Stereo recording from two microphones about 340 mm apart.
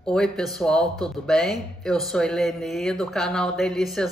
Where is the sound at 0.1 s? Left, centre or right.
Centre.